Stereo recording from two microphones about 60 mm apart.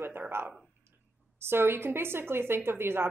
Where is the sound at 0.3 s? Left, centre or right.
Right.